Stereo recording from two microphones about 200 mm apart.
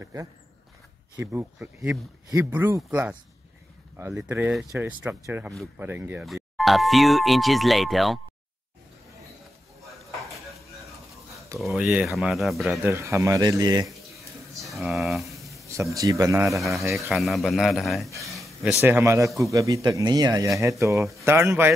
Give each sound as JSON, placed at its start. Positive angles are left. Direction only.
{"t": 0.0, "sound": "speech", "side_deg": -15}
{"t": 11.5, "sound": "speech", "side_deg": 0}
{"t": 12.8, "sound": "speech", "side_deg": -15}
{"t": 14.6, "sound": "a sound", "side_deg": 0}
{"t": 15.7, "sound": "speech", "side_deg": -15}
{"t": 16.5, "sound": "speech", "side_deg": 0}
{"t": 18.3, "sound": "a sound", "side_deg": 0}
{"t": 18.8, "sound": "speech", "side_deg": -10}